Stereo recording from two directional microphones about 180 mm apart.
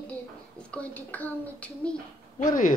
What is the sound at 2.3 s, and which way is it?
Speech, 45° left (ahead or behind).